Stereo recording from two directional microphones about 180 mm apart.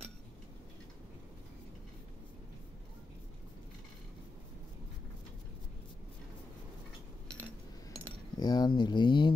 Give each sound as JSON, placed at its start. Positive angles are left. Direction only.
{"t": 8.4, "sound": "speech", "side_deg": 25}